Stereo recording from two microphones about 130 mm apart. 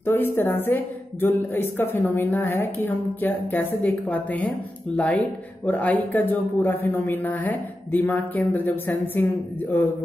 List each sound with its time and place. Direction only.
0.0 s a woman's voice: 15° left (ahead or behind)